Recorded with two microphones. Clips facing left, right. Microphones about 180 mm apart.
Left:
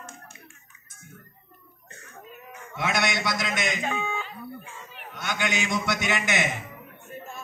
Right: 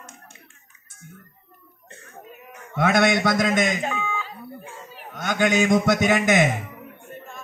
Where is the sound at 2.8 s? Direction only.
55° right (ahead or behind).